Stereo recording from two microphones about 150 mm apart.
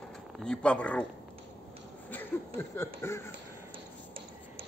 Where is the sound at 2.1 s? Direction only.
15° left (ahead or behind).